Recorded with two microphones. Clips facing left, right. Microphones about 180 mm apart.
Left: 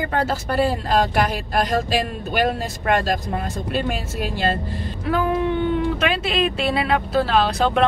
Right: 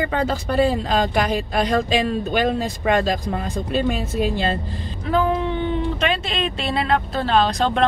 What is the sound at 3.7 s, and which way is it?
Speech, 5° left (ahead or behind).